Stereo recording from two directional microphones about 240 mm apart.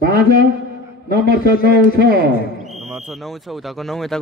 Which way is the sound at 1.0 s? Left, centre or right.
Right.